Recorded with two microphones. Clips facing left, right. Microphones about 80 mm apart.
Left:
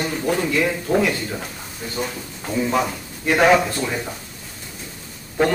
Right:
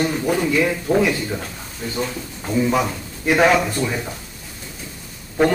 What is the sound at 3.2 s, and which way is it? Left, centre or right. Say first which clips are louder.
Speech: right 1 dB; centre.